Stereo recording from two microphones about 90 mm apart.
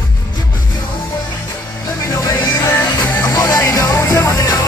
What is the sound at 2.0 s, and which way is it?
Music, 35° left (ahead or behind).